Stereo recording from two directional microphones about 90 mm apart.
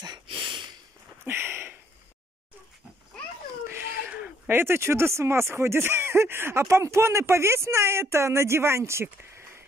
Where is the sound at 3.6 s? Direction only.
25° right (ahead or behind).